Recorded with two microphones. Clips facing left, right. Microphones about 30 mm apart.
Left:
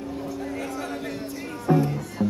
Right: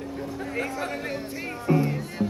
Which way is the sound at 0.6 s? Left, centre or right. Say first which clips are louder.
Right 2 dB; right.